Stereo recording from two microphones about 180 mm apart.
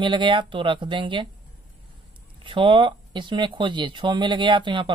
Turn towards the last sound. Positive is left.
turn(degrees=-25)  # may be behind; listen again after turning